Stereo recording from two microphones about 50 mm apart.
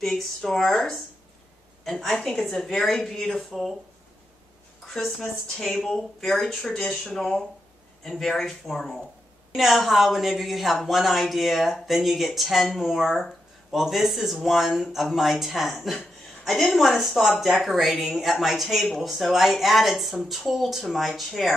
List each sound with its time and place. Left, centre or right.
0.0 s speech: centre
4.8 s a sound: centre
5.2 s speech: centre
6.6 s speech: centre
6.9 s speech: centre